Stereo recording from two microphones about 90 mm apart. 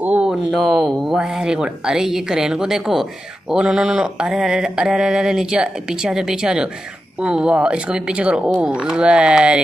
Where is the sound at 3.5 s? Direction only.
5° right (ahead or behind).